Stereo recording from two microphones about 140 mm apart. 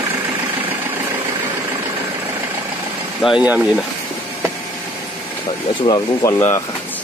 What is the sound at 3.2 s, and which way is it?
Speech, 5° right (ahead or behind).